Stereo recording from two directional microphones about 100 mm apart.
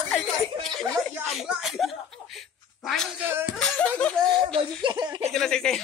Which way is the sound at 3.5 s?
10° left (ahead or behind).